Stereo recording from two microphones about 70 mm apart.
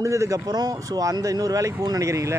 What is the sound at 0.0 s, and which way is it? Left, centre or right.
Speech, right.